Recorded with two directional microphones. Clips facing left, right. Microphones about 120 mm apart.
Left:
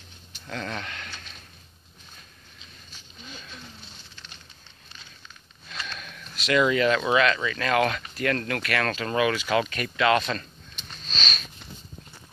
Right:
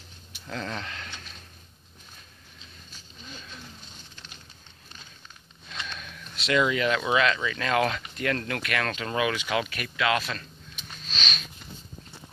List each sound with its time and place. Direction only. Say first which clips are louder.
0.5 s speech: left 1 dB; 25° right (ahead or behind)
5.7 s a sound: left 1 dB; 20° right (ahead or behind)
6.7 s speech: left 3 dB; 15° right (ahead or behind)
10.9 s sniff: left 1 dB; 10° right (ahead or behind)